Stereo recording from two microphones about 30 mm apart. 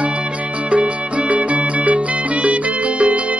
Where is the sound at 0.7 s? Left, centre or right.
Right.